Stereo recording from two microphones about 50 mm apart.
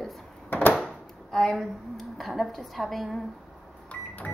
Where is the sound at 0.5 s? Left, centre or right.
Left.